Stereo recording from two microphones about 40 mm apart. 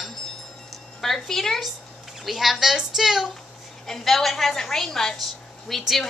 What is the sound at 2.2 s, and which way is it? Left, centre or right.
A woman's voice, centre.